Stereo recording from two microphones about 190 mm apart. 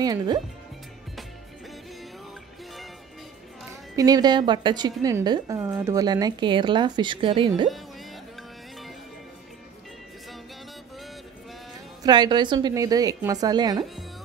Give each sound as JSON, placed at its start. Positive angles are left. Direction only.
{"t": 0.0, "sound": "speech", "side_deg": -20}
{"t": 3.9, "sound": "speech", "side_deg": -20}
{"t": 12.0, "sound": "speech", "side_deg": -20}